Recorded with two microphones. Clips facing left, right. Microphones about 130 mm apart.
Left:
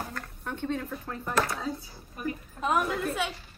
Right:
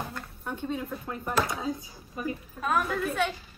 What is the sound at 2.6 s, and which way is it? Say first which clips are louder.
Speech: left 1 dB; 15° left (ahead or behind).